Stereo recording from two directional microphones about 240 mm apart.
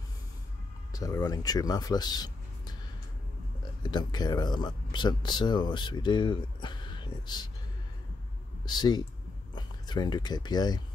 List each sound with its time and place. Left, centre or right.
0.9 s speech: centre
3.8 s speech: centre
8.6 s speech: centre